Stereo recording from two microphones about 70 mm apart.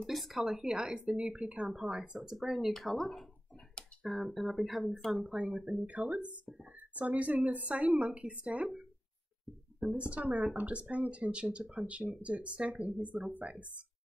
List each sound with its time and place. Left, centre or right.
0.0 s speech: centre
5.2 s speech: centre